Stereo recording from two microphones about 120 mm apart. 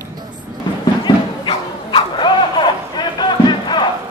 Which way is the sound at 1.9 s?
40° left (ahead or behind).